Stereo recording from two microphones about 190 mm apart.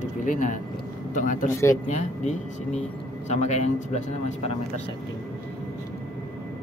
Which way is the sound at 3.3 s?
35° left (ahead or behind).